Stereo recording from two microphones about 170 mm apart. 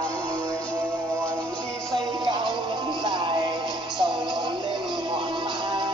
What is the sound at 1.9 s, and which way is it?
Music, 25° right (ahead or behind).